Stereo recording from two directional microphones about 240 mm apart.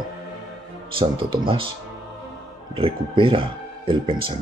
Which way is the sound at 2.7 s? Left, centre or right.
Right.